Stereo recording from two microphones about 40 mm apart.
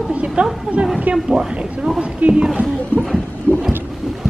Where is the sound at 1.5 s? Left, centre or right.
Right.